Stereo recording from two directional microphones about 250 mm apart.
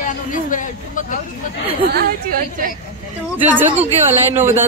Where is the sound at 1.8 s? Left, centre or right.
Right.